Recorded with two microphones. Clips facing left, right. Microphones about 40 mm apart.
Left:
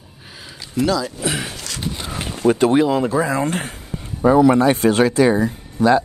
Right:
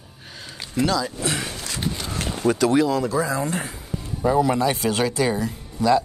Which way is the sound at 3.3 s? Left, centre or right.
Left.